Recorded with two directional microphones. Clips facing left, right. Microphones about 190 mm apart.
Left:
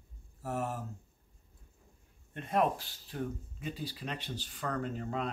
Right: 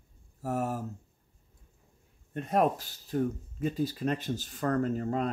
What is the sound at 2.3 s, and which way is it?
Speech, 40° right (ahead or behind).